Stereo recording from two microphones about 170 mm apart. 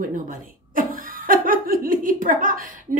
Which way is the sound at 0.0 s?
50° right (ahead or behind).